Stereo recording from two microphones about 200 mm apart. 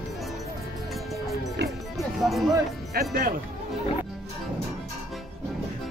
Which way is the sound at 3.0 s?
45° right (ahead or behind).